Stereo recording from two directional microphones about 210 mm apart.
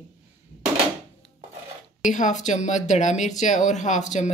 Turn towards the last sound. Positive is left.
turn(degrees=35)  # may be behind; listen again after turning